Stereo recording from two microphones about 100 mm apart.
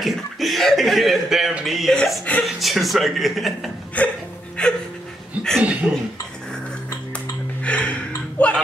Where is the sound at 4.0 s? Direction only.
15° left (ahead or behind).